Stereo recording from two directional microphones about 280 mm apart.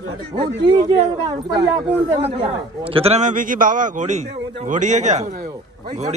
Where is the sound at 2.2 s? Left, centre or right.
Right.